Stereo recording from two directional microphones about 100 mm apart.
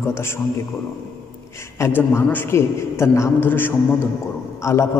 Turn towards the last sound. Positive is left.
turn(degrees=30)  # may be behind; listen again after turning